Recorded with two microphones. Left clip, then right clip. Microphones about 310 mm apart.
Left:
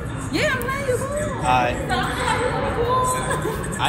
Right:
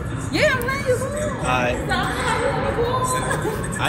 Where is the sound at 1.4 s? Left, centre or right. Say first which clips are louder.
Left 3 dB; centre.